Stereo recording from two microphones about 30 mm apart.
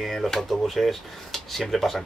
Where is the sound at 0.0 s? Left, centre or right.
Centre.